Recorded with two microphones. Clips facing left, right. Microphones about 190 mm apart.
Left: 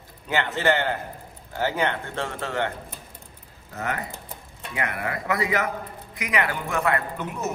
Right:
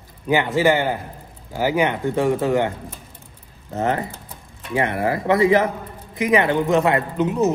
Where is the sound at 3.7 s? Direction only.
30° right (ahead or behind).